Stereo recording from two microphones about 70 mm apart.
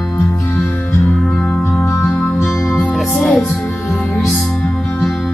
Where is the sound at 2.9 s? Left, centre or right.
Centre.